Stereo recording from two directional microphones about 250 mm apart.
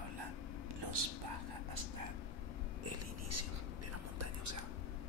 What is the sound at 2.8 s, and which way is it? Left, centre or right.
Whispering, right.